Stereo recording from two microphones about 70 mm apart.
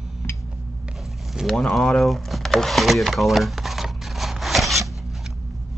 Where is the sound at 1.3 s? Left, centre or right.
Centre.